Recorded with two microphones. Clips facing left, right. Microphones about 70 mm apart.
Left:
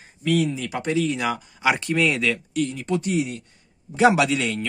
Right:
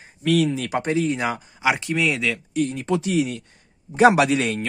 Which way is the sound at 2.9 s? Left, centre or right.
Right.